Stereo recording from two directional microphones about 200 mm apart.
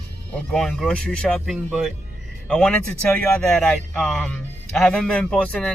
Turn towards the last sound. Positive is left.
turn(degrees=5)  # may be behind; listen again after turning